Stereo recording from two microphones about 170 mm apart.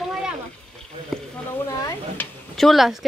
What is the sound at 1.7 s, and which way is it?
Speech, 20° left (ahead or behind).